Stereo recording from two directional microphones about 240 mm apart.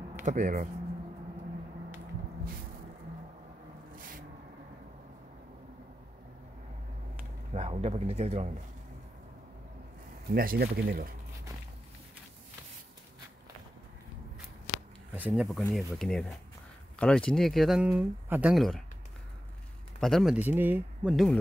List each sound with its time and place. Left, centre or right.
0.2 s speech: right
3.9 s a sound: right
7.5 s a man's voice: right
10.3 s speech: right
15.1 s speech: centre
20.0 s speech: centre